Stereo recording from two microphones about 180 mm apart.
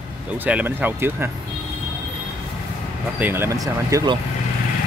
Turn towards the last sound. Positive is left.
turn(degrees=-20)  # may be behind; listen again after turning